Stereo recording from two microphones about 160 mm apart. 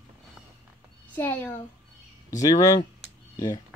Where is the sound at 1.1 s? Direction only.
15° left (ahead or behind).